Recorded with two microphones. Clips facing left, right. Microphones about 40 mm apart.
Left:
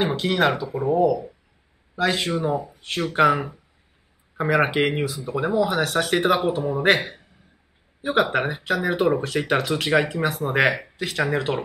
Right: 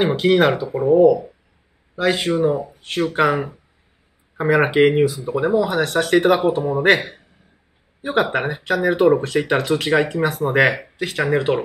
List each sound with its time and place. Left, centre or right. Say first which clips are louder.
0.0 s speech: right 5 dB; centre
8.2 s speech: right 2 dB; centre